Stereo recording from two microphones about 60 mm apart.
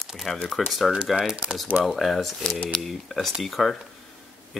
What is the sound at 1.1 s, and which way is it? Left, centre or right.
Speech, centre.